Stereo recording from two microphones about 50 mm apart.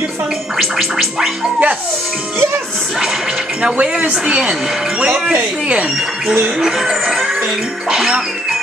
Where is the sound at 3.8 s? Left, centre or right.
Right.